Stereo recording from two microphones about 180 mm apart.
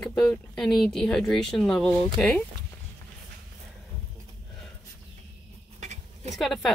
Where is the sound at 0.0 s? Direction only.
5° left (ahead or behind).